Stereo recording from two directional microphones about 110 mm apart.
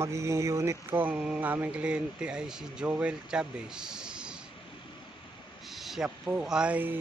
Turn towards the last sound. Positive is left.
turn(degrees=-15)  # may be behind; listen again after turning